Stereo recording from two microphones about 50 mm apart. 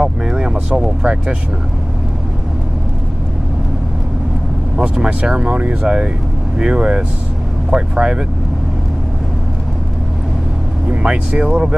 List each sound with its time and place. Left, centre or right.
0.0 s speech: centre
4.7 s speech: centre
10.9 s speech: right